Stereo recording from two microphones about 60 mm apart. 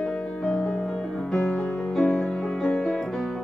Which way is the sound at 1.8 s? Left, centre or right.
Centre.